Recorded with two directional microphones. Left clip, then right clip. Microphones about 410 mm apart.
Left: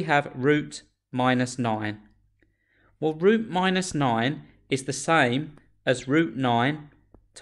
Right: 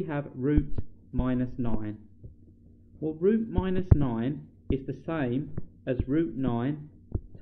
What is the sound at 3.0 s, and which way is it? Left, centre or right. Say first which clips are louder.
Speech: left 5 dB; centre.